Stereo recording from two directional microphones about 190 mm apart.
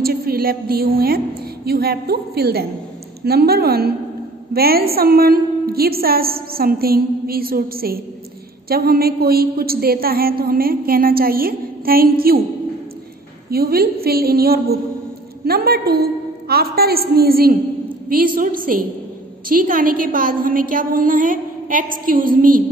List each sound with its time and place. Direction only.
0.0 s a woman's voice: 55° right (ahead or behind)
13.5 s a woman's voice: 55° right (ahead or behind)